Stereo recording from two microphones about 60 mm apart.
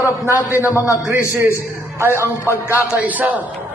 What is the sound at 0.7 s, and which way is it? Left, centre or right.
Speech, left.